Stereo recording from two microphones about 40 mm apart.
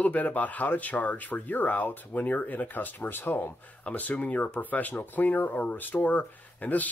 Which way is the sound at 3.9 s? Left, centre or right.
Left.